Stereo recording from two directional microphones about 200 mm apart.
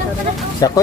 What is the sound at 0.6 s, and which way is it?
Speech, 20° left (ahead or behind).